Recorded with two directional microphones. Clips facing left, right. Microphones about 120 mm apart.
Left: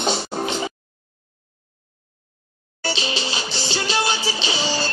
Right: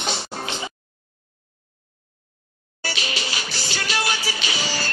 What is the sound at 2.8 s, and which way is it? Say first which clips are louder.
Music: left 4 dB; 25° left (ahead or behind).